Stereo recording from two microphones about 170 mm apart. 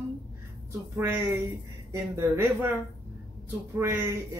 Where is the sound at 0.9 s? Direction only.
15° right (ahead or behind).